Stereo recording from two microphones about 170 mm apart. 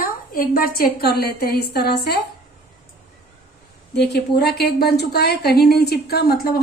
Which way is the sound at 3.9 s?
75° left (ahead or behind).